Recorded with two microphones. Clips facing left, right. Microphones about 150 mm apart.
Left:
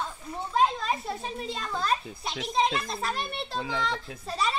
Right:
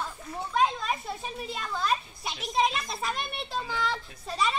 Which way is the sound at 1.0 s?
Centre (ahead or behind).